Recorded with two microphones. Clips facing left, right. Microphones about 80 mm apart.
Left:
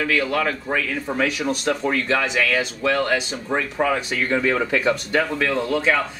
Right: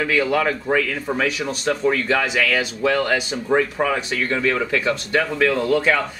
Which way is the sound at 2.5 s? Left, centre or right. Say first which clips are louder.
Right 1 dB; centre.